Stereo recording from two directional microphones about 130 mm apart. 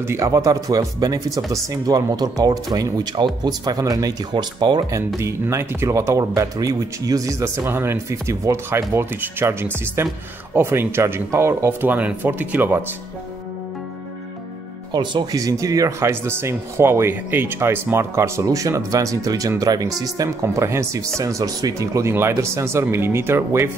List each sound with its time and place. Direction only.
0.0 s speech: 20° right (ahead or behind)
5.2 s speech: 20° right (ahead or behind)
14.9 s speech: 35° right (ahead or behind)